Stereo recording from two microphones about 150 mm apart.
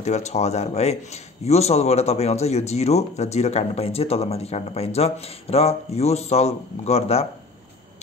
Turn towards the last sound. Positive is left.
turn(degrees=45)  # may be behind; listen again after turning